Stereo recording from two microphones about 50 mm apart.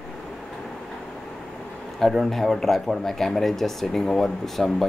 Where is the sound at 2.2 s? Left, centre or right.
Centre.